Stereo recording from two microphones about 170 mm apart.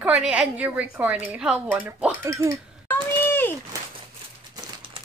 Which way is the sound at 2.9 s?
10° left (ahead or behind).